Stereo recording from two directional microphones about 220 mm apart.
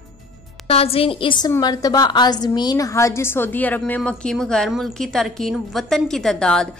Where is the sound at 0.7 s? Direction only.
25° left (ahead or behind).